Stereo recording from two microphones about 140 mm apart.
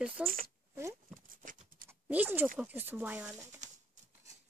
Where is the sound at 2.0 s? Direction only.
15° right (ahead or behind).